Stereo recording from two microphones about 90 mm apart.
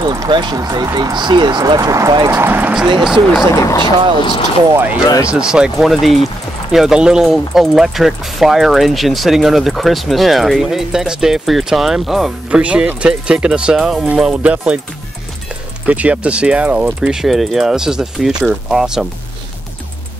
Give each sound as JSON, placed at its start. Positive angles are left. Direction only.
{"t": 0.0, "sound": "speech", "side_deg": -50}
{"t": 1.1, "sound": "speech", "side_deg": -55}
{"t": 1.8, "sound": "speech", "side_deg": -40}
{"t": 2.3, "sound": "speech", "side_deg": -20}
{"t": 3.0, "sound": "speech", "side_deg": -5}
{"t": 3.5, "sound": "speech", "side_deg": 40}
{"t": 5.0, "sound": "speech", "side_deg": 45}
{"t": 5.3, "sound": "speech", "side_deg": -10}
{"t": 15.8, "sound": "speech", "side_deg": -15}